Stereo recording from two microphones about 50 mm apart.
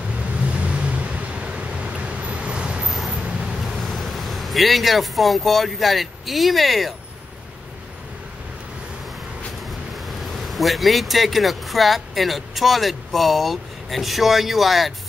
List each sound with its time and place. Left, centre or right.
0.5 s vehicle: right
3.1 s a sound: right
3.6 s speech: centre
9.7 s speech: centre